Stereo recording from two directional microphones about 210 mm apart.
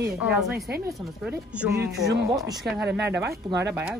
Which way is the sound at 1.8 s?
50° right (ahead or behind).